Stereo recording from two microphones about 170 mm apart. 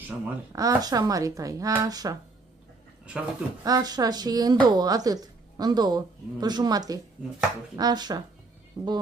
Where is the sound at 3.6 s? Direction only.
20° right (ahead or behind).